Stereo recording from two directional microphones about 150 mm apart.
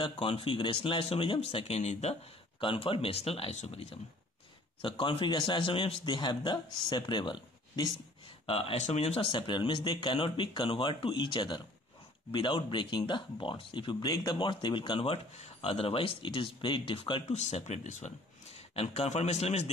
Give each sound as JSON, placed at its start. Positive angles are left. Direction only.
{"t": 0.0, "sound": "speech", "side_deg": 35}
{"t": 8.5, "sound": "speech", "side_deg": 40}
{"t": 17.3, "sound": "speech", "side_deg": 45}